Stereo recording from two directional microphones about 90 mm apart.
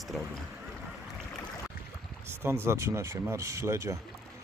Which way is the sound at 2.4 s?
30° right (ahead or behind).